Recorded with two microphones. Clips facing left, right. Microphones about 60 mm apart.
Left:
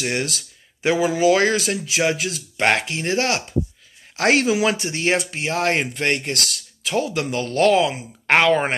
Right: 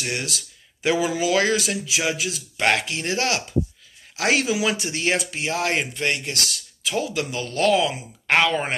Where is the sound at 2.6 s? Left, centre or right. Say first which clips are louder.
Left 2 dB; left.